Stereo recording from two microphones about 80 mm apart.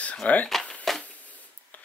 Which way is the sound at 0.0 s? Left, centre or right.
Centre.